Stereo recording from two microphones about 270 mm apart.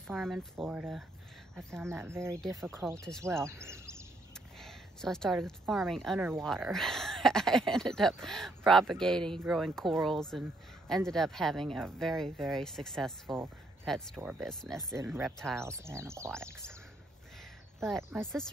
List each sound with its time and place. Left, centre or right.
0.1 s speech: centre
3.0 s speech: centre
3.4 s a sound: centre
4.6 s a woman's voice: centre
15.5 s speech: centre
17.8 s speech: centre